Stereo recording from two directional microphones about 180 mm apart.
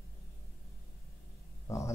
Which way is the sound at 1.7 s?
15° left (ahead or behind).